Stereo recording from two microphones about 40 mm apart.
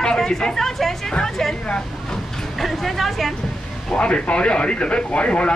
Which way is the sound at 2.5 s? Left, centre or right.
Centre.